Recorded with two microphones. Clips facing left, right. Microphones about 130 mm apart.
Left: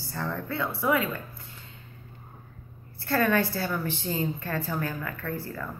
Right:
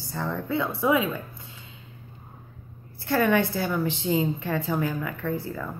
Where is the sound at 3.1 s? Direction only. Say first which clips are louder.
Right 2 dB; 15° right (ahead or behind).